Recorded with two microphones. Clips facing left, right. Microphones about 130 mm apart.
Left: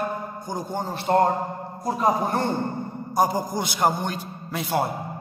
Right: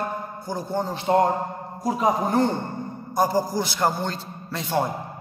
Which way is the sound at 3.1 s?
15° left (ahead or behind).